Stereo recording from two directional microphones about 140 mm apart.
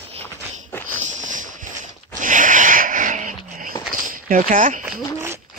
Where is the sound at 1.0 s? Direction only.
60° right (ahead or behind).